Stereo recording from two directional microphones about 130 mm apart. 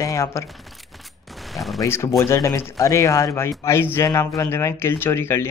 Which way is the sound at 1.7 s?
20° left (ahead or behind).